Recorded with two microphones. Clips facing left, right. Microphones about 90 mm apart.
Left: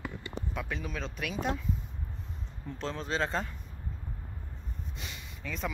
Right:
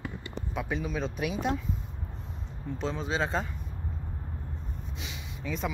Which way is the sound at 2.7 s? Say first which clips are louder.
Right 2 dB; 5° right (ahead or behind).